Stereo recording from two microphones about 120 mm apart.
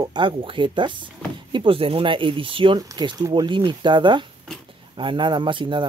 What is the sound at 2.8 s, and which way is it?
Speech, 35° right (ahead or behind).